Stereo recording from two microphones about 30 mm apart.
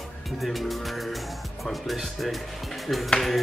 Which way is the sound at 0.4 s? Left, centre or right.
Centre.